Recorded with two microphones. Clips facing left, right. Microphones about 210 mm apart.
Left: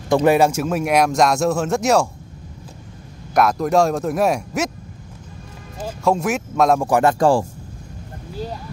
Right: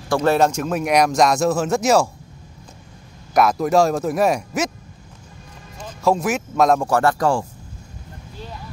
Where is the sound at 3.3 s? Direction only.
Centre (ahead or behind).